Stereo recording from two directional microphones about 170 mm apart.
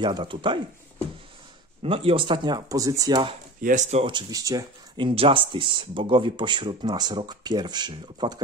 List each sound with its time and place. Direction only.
0.0 s speech: 30° right (ahead or behind)
1.8 s speech: 35° right (ahead or behind)
3.6 s speech: 45° right (ahead or behind)
4.0 s speech: 25° right (ahead or behind)